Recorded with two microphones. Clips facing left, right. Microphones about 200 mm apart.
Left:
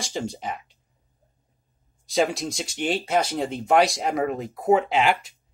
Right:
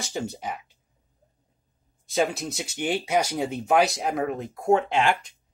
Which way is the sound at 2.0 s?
Centre (ahead or behind).